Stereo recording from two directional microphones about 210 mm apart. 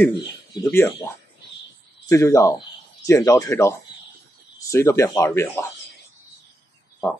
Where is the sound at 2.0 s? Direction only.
15° left (ahead or behind).